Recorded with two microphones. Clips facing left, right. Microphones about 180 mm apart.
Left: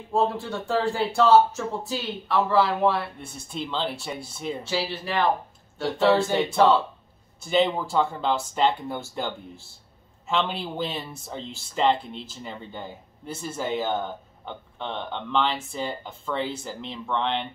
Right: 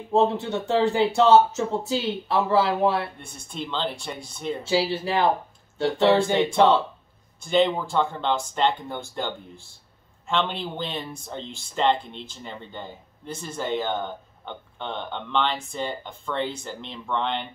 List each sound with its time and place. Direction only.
0.1 s speech: 25° right (ahead or behind)
3.2 s speech: 5° left (ahead or behind)
4.6 s speech: 30° right (ahead or behind)
6.3 s speech: 5° left (ahead or behind)